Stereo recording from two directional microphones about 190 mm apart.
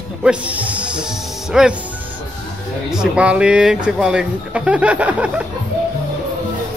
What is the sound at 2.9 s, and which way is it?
Speech, 5° right (ahead or behind).